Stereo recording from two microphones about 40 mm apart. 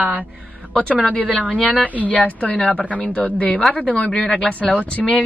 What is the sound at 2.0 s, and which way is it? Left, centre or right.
Speech, left.